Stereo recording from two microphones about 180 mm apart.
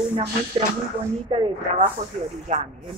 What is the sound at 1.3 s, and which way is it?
Speech, 30° right (ahead or behind).